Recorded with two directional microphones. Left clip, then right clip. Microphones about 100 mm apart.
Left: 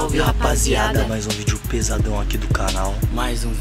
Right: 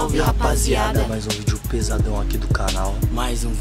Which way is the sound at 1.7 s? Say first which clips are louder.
Left 1 dB; 5° left (ahead or behind).